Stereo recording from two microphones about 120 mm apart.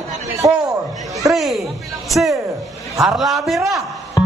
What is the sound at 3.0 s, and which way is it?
Speech, centre (ahead or behind).